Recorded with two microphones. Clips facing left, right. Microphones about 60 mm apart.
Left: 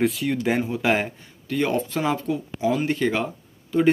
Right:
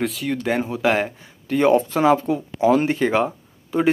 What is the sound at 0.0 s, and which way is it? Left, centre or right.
Speech, centre.